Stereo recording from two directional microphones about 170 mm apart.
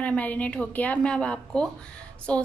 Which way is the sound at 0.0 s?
10° left (ahead or behind).